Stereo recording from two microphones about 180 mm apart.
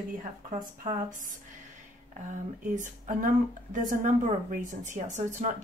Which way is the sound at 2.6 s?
45° right (ahead or behind).